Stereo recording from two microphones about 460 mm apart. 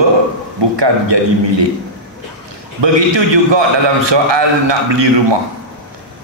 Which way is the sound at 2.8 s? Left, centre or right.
Right.